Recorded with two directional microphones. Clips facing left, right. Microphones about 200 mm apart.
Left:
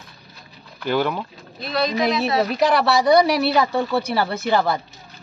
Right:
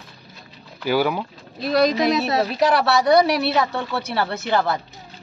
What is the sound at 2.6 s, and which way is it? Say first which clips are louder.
Speech: even; centre (ahead or behind).